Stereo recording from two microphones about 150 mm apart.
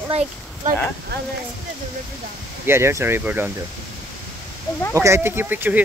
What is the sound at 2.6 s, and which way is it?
Speech, 15° right (ahead or behind).